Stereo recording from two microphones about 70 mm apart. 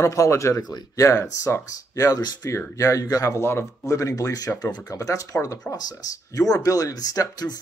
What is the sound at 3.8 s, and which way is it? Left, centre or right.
Speech, left.